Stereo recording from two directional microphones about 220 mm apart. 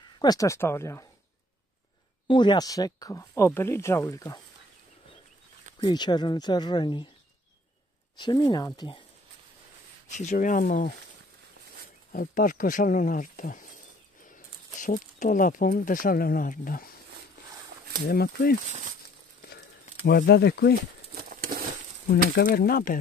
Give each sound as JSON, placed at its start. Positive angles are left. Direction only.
{"t": 0.2, "sound": "speech", "side_deg": 15}
{"t": 2.2, "sound": "speech", "side_deg": 20}
{"t": 5.8, "sound": "speech", "side_deg": 20}
{"t": 8.2, "sound": "speech", "side_deg": 20}
{"t": 10.1, "sound": "speech", "side_deg": 35}
{"t": 12.1, "sound": "speech", "side_deg": 40}
{"t": 14.8, "sound": "speech", "side_deg": 35}
{"t": 18.0, "sound": "speech", "side_deg": 45}
{"t": 20.1, "sound": "speech", "side_deg": 50}
{"t": 21.1, "sound": "a sound", "side_deg": -40}
{"t": 22.3, "sound": "speech", "side_deg": 45}